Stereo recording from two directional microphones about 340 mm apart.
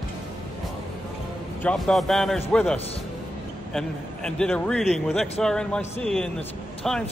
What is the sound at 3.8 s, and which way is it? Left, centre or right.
A man's voice, centre.